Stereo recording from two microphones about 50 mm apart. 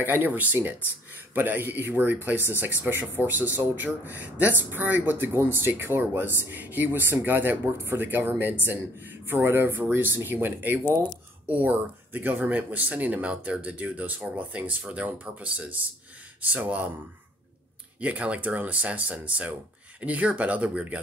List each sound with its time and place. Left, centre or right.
0.0 s speech: right
18.0 s speech: right